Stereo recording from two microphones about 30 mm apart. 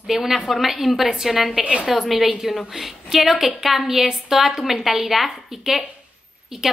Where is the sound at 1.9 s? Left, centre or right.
Centre.